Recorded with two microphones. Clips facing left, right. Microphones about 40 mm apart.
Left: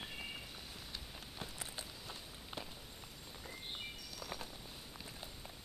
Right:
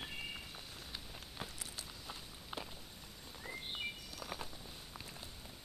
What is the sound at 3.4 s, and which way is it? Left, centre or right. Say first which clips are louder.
Bird: right 4 dB; centre.